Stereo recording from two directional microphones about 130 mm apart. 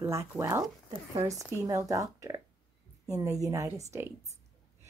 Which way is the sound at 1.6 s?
25° right (ahead or behind).